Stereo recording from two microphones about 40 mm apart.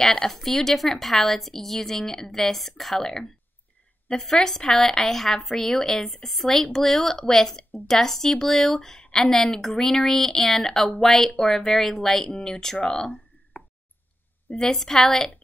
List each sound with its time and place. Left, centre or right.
0.0 s speech: centre
14.6 s speech: centre